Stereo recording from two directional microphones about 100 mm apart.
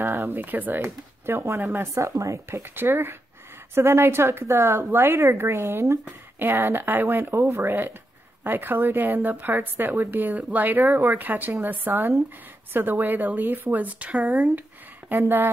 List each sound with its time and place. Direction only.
0.0 s a woman's voice: 25° right (ahead or behind)